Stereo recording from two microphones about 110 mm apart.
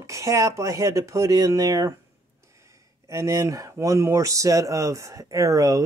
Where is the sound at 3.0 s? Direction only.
25° right (ahead or behind).